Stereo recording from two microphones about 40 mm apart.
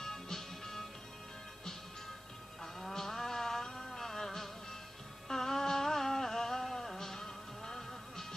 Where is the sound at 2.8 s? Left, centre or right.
Centre.